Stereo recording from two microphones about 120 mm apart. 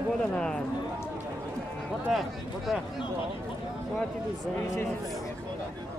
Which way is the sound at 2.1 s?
Centre (ahead or behind).